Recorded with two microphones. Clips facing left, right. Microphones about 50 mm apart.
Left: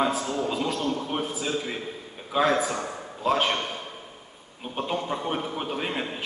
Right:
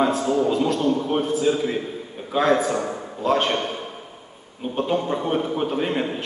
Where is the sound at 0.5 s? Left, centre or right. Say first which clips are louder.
Right 7 dB; centre.